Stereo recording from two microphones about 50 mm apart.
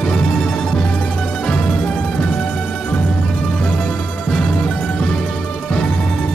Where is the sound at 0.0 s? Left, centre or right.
Centre.